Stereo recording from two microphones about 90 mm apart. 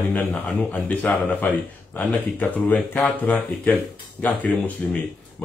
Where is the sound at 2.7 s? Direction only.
10° left (ahead or behind).